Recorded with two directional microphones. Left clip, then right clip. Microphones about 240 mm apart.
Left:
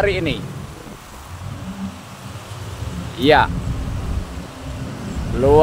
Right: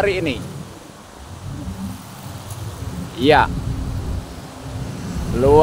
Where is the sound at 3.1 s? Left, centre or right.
Centre.